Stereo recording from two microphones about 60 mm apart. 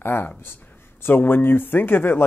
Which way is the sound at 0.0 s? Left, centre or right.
Left.